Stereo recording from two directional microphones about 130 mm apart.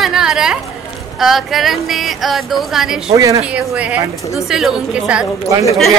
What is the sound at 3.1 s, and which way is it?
Speech, 25° right (ahead or behind).